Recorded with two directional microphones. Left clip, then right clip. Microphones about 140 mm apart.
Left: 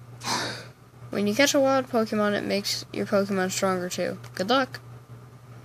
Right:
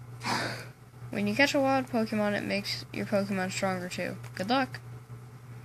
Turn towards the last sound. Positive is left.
turn(degrees=90)